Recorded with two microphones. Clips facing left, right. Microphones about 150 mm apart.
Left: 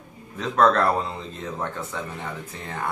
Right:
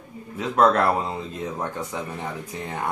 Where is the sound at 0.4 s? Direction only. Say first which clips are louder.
Right 1 dB; 10° right (ahead or behind).